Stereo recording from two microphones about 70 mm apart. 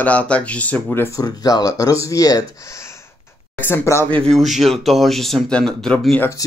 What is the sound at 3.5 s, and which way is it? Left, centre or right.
Speech, left.